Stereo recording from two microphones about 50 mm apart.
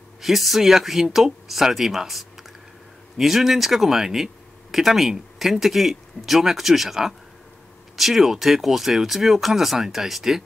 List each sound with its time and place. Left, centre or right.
0.2 s speech: centre